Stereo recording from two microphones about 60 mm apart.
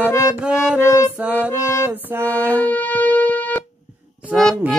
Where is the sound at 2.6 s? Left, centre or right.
Left.